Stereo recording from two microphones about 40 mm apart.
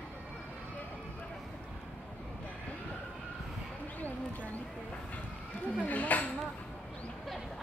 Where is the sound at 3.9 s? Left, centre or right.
Left.